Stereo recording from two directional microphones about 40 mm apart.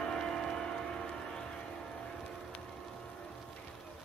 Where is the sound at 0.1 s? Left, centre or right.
Centre.